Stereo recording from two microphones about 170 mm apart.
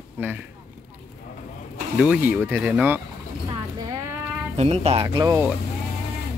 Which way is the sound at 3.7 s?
20° right (ahead or behind).